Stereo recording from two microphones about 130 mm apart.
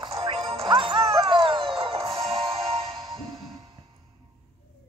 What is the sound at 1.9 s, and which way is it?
Music, 25° right (ahead or behind).